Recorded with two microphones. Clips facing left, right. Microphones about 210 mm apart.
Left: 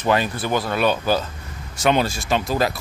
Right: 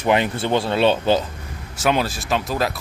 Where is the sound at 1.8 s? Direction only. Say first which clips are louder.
Left 1 dB; centre (ahead or behind).